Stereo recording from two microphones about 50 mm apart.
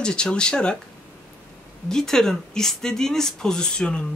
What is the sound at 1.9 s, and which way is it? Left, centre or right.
Speech, centre.